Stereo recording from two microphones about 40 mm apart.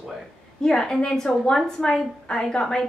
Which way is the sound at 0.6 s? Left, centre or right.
Centre.